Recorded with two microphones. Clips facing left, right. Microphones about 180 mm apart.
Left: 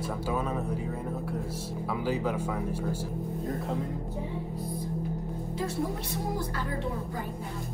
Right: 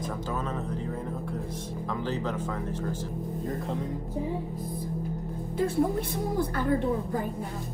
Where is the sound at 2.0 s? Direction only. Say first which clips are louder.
Left 3 dB; 10° left (ahead or behind).